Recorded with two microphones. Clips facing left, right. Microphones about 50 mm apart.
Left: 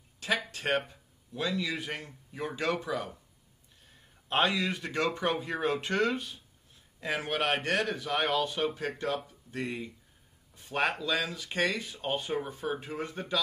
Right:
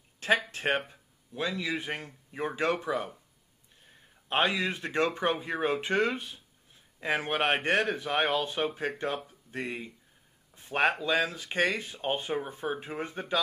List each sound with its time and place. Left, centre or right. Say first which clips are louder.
0.5 s speech: right 1 dB; right
4.3 s speech: even; right